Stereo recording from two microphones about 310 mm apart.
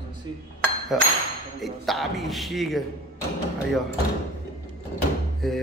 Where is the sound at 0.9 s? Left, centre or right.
Centre.